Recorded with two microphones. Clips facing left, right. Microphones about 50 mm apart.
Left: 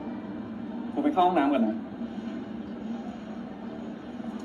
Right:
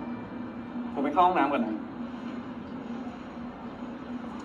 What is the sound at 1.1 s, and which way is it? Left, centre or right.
Speech, right.